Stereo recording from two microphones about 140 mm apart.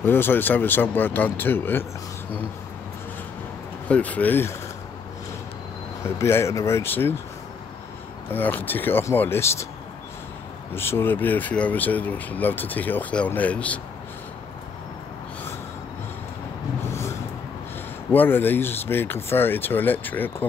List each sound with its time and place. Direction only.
0.0 s speech: 15° left (ahead or behind)
3.9 s speech: 10° left (ahead or behind)
6.0 s speech: 20° left (ahead or behind)
8.3 s speech: 15° left (ahead or behind)
10.7 s speech: 15° left (ahead or behind)
18.1 s speech: 15° left (ahead or behind)